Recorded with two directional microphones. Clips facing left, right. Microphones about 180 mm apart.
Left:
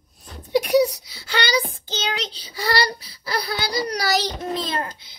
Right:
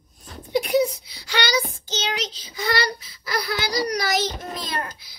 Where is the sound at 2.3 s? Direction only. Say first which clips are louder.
Left 1 dB; 35° left (ahead or behind).